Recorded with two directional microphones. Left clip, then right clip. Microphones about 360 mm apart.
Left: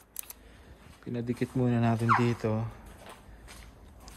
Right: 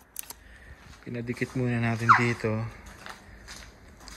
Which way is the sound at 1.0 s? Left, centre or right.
Centre.